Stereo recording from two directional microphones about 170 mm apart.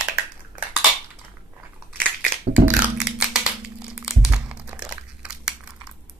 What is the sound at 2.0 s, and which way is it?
Music, 10° right (ahead or behind).